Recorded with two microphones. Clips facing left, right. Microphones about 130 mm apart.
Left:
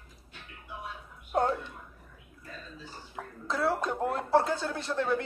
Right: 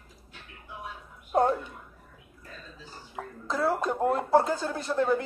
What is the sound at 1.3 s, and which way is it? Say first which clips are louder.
Speech: right 4 dB; 10° right (ahead or behind).